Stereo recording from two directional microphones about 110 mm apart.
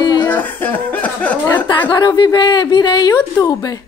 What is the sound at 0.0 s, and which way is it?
Chuckle, 40° left (ahead or behind).